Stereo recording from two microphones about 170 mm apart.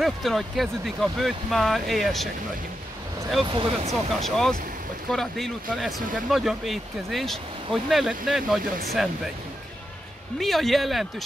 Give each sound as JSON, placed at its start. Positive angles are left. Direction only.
{"t": 0.0, "sound": "speech", "side_deg": 0}
{"t": 3.4, "sound": "speech", "side_deg": -30}
{"t": 4.2, "sound": "speech", "side_deg": 0}
{"t": 10.4, "sound": "speech", "side_deg": 0}